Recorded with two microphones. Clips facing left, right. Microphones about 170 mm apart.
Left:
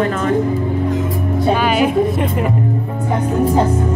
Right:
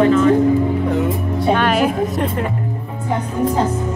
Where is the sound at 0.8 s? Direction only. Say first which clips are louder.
Right 2 dB; 60° right (ahead or behind).